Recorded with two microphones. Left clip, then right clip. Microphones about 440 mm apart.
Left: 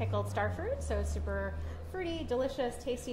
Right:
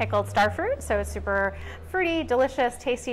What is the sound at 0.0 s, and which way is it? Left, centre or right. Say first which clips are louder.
A woman's voice: right 12 dB; right.